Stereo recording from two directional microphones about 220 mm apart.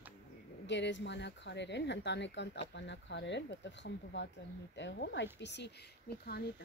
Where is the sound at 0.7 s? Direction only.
55° left (ahead or behind).